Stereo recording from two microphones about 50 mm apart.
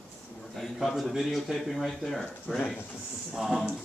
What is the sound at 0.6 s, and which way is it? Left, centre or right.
Speech, centre.